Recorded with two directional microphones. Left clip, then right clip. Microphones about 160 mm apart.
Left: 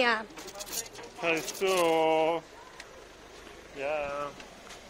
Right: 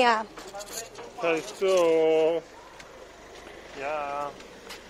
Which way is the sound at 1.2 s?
75° left (ahead or behind).